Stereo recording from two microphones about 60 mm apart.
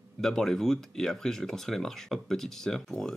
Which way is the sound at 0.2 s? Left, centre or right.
Centre.